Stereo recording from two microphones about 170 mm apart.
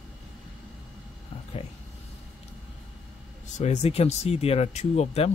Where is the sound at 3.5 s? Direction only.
40° left (ahead or behind).